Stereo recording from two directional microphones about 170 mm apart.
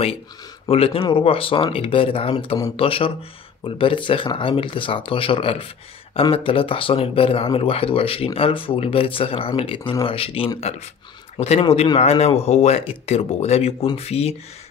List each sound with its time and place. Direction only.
0.7 s a man's voice: 35° left (ahead or behind)